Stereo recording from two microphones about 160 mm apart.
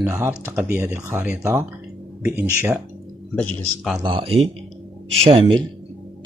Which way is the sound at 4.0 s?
35° right (ahead or behind).